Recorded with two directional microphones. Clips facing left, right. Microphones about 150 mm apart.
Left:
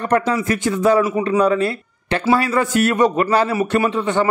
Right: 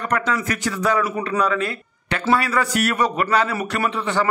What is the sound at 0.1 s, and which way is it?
A man's voice, 25° left (ahead or behind).